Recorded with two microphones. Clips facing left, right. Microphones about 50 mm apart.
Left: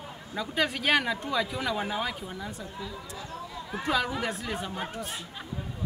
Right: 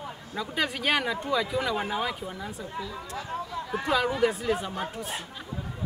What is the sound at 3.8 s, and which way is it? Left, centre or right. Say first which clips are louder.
Speech: right 4 dB; centre.